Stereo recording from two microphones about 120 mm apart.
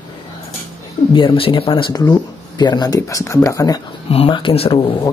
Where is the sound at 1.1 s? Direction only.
45° left (ahead or behind); by 3.8 s 30° left (ahead or behind).